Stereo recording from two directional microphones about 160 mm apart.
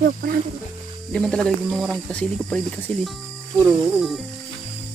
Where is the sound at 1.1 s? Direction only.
5° left (ahead or behind).